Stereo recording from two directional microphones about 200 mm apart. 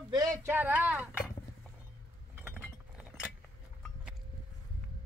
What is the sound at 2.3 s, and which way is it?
Chink, 10° right (ahead or behind).